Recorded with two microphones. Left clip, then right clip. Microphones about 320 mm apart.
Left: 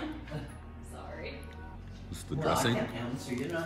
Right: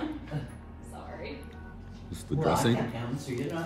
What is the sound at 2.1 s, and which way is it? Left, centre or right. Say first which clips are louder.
Speech: right 3 dB; centre.